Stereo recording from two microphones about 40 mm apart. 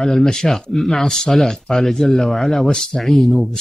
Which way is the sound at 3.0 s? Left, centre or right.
Centre.